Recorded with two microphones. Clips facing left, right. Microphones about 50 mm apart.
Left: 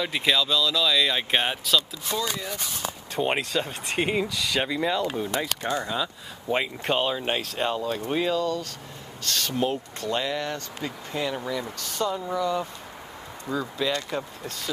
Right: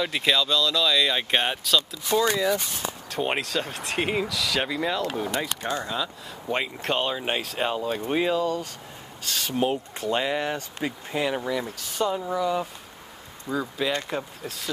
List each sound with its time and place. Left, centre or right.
0.0 s speech: centre